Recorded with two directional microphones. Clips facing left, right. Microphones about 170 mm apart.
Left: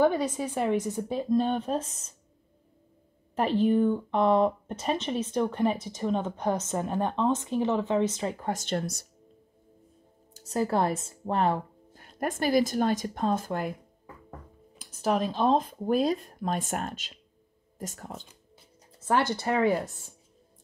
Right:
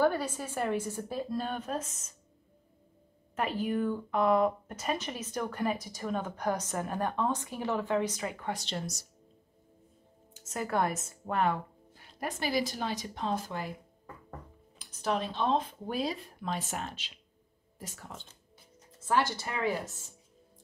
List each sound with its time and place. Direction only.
0.4 s a woman's voice: 5° left (ahead or behind)
0.9 s speech: 20° left (ahead or behind)
3.3 s speech: 30° left (ahead or behind)
8.5 s speech: 50° left (ahead or behind)
10.3 s speech: 35° left (ahead or behind)
12.0 s speech: 50° left (ahead or behind)
14.8 s speech: 45° left (ahead or behind)
19.3 s speech: 60° left (ahead or behind)